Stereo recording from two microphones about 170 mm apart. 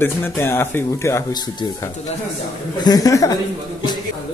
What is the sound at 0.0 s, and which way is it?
Speech, 15° left (ahead or behind).